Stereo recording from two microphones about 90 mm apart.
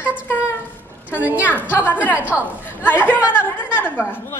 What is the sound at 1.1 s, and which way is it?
Music, 15° right (ahead or behind).